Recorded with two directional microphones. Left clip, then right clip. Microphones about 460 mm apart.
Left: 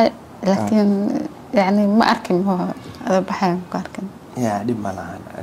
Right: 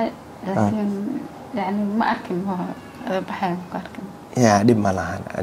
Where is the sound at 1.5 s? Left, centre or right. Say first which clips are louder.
Left 9 dB; left.